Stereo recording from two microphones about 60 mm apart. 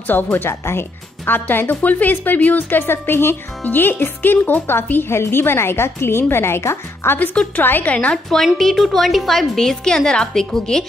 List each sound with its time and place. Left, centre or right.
0.0 s speech: left
7.5 s a woman's voice: left
8.1 s a woman's voice: centre